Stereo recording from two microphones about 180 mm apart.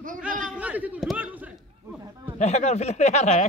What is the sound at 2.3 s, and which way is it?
Speech, 40° left (ahead or behind).